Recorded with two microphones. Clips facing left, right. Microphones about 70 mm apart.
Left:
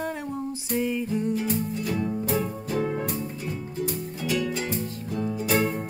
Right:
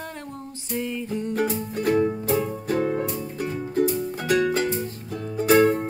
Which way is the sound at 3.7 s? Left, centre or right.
Right.